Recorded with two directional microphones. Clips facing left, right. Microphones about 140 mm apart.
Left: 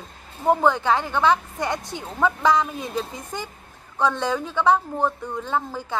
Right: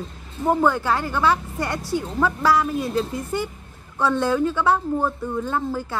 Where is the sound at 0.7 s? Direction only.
5° right (ahead or behind).